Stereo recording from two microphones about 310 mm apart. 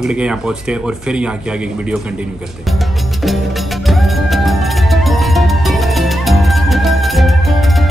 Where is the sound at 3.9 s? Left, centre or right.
Centre.